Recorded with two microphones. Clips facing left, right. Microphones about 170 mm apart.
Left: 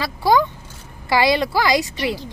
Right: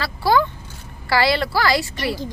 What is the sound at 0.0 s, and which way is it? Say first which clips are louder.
A woman's voice: left 1 dB; 15° left (ahead or behind).